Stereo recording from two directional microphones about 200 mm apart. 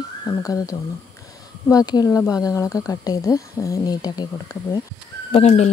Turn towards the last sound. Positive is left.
turn(degrees=35)  # may be behind; listen again after turning